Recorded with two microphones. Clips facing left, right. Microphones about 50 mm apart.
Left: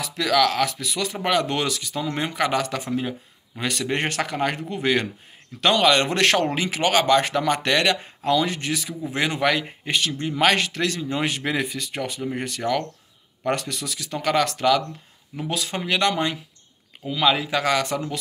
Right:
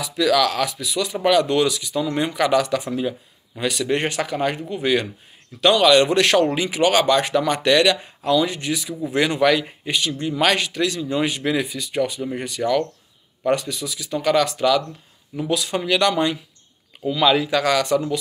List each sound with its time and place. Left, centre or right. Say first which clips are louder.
0.0 s speech: right 2 dB; left
2.0 s speech: right 3 dB; left
9.1 s speech: right 4 dB; left
9.8 s speech: even; left
10.2 s speech: even; left
13.6 s speech: right 2 dB; left
14.2 s speech: right 2 dB; left
17.1 s speech: right 3 dB; left